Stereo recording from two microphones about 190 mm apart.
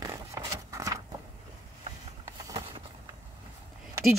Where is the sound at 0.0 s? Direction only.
15° right (ahead or behind).